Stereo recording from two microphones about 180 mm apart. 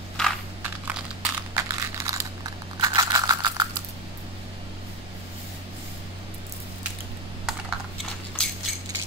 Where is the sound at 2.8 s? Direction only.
20° right (ahead or behind).